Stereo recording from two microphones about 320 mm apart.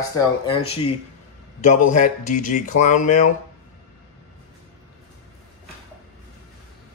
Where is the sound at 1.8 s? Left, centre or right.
Left.